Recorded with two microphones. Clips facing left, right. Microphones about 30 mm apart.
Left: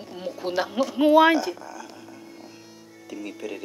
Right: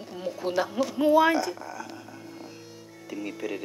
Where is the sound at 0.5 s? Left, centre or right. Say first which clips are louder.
Left 4 dB; left.